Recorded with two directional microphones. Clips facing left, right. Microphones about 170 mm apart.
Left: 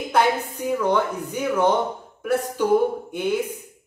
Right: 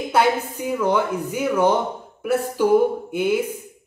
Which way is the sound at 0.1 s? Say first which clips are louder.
Right 1 dB; 5° right (ahead or behind).